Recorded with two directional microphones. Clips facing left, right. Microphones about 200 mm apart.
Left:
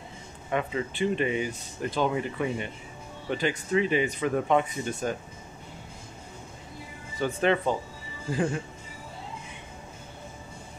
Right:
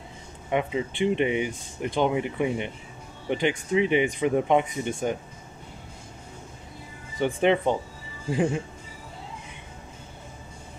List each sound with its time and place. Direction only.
0.5 s speech: 15° right (ahead or behind)
7.2 s speech: 15° right (ahead or behind)